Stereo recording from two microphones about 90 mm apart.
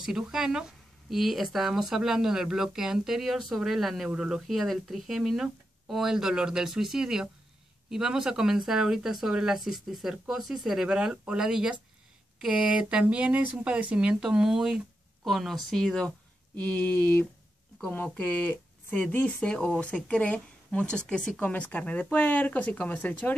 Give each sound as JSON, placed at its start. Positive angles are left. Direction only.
{"t": 0.0, "sound": "speech", "side_deg": -5}
{"t": 16.5, "sound": "speech", "side_deg": 15}